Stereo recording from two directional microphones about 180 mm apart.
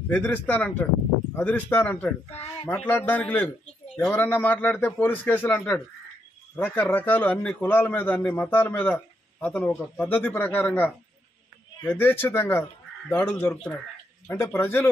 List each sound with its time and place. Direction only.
0.1 s a man's voice: 10° left (ahead or behind)
2.2 s speech: 35° left (ahead or behind)
2.7 s a man's voice: 10° left (ahead or behind)